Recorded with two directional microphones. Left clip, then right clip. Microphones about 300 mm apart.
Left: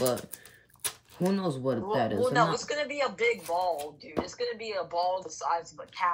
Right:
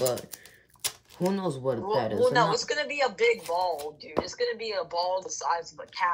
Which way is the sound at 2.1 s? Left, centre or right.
Centre.